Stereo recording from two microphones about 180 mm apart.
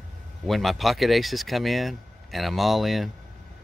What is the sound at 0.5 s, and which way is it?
Speech, centre (ahead or behind).